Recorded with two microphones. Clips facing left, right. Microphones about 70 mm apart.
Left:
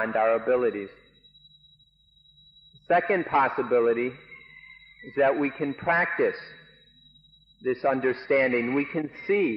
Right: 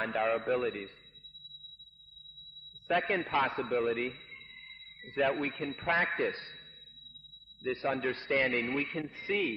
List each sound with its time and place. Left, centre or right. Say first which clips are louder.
0.2 s a man's voice: left 8 dB; left
2.9 s a man's voice: left 8 dB; left
3.6 s a man's voice: left 9 dB; left
5.0 s a man's voice: left 8 dB; left
6.3 s a sound: left 5 dB; left
7.6 s a man's voice: left 8 dB; left